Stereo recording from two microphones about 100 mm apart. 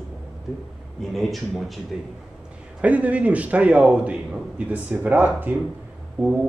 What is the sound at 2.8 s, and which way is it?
A man's voice, 15° right (ahead or behind).